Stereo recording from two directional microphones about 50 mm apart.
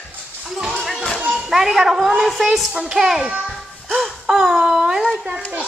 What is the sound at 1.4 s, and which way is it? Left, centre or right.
A woman's voice, centre.